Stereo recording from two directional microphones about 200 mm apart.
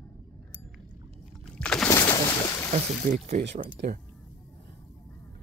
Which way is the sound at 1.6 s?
5° left (ahead or behind).